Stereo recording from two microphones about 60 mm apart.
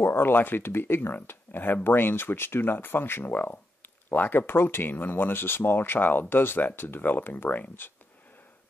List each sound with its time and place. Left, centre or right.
0.0 s speech: left